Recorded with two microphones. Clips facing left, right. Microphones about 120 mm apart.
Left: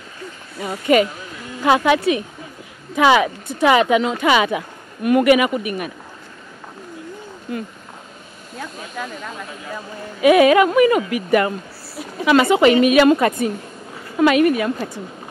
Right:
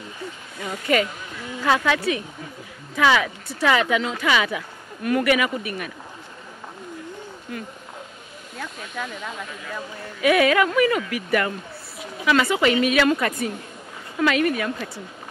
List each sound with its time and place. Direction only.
0.9 s speech: 20° left (ahead or behind)
3.0 s speech: 20° left (ahead or behind)
7.5 s speech: 25° left (ahead or behind)
9.0 s speech: 5° left (ahead or behind)
10.2 s speech: 20° left (ahead or behind)